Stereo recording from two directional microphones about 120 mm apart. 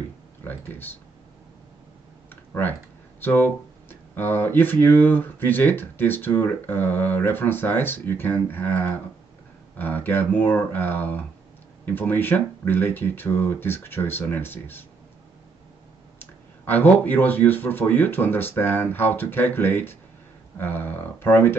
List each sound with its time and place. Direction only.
0.4 s speech: 15° left (ahead or behind)
3.2 s speech: 15° left (ahead or behind)
16.2 s speech: 15° left (ahead or behind)